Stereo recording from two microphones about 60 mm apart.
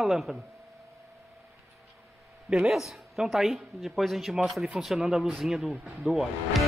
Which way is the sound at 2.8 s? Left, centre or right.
Centre.